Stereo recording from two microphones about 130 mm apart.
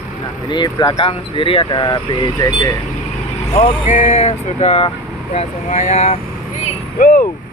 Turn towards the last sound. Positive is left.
turn(degrees=90)